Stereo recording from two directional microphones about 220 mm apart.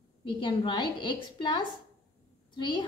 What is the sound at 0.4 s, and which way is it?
A woman's voice, 20° left (ahead or behind).